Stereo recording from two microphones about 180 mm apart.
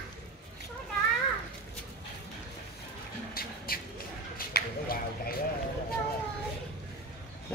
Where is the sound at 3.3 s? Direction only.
55° left (ahead or behind).